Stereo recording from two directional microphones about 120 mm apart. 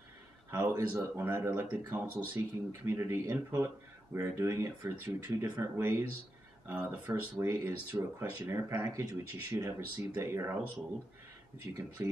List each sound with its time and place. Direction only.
0.5 s speech: 20° right (ahead or behind)
11.7 s speech: 20° right (ahead or behind)